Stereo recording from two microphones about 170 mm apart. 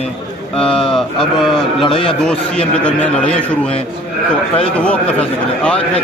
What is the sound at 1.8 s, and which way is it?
Speech, 30° left (ahead or behind).